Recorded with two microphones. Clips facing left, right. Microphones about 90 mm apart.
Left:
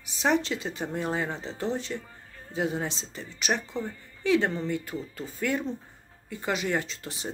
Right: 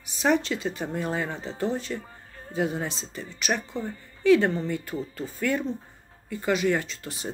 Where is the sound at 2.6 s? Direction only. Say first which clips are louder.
Right 1 dB; 20° left (ahead or behind).